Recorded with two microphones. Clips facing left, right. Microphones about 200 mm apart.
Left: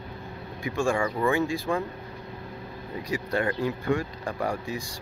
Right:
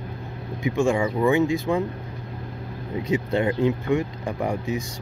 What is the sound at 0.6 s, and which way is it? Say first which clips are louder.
Speech: right 4 dB; 20° right (ahead or behind).